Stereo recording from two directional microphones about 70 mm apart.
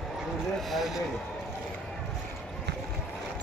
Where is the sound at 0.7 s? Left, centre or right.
Centre.